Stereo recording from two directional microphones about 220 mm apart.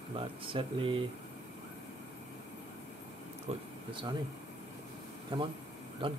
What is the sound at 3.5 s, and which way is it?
Speech, 25° right (ahead or behind).